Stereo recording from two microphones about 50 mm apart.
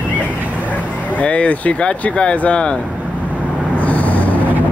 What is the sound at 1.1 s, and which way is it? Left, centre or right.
Speech, left.